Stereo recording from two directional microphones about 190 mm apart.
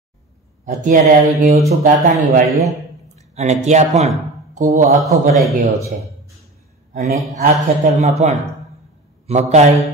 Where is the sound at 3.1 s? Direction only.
35° right (ahead or behind).